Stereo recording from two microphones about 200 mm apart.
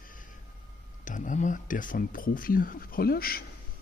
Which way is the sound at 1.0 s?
40° left (ahead or behind).